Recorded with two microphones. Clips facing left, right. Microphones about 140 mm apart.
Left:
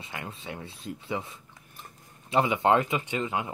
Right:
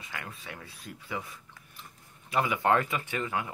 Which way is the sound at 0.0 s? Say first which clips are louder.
Left 3 dB; 25° left (ahead or behind).